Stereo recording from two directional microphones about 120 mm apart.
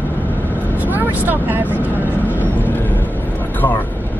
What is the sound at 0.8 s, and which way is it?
Speech, 15° right (ahead or behind).